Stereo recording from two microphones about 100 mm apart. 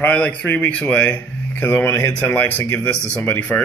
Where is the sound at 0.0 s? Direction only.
15° left (ahead or behind).